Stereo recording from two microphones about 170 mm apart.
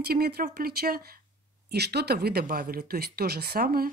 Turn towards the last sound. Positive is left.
turn(degrees=-65)  # may be behind; listen again after turning